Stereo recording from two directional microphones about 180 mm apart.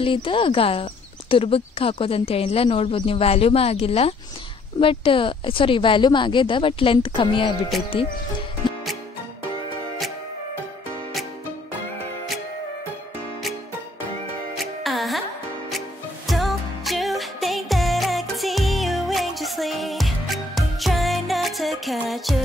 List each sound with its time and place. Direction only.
0.0 s a woman's voice: 30° left (ahead or behind)
8.6 s music: 25° left (ahead or behind)
14.6 s music: centre (ahead or behind)
16.3 s music: centre (ahead or behind)